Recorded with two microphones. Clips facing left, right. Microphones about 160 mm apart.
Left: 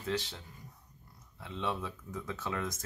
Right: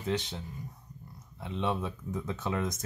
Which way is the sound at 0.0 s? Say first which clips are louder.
Right 3 dB; 20° right (ahead or behind).